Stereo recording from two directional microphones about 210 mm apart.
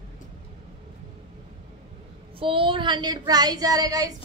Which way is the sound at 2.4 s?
25° right (ahead or behind).